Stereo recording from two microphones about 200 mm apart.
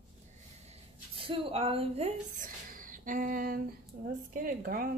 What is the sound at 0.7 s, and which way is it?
A woman's voice, 25° right (ahead or behind).